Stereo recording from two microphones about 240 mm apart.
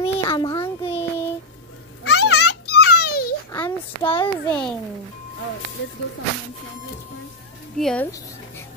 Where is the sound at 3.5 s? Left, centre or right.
Centre.